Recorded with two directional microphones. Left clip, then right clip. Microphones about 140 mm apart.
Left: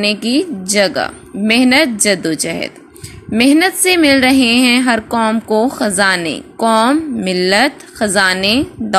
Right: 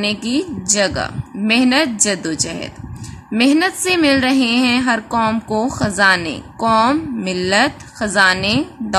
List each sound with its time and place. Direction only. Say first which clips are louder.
0.0 s a woman's voice: left 5 dB; 15° left (ahead or behind)